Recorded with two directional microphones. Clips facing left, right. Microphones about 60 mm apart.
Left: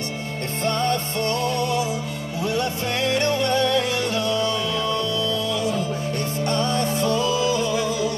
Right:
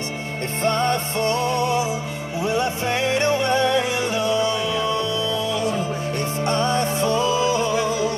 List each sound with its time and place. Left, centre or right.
0.6 s music: right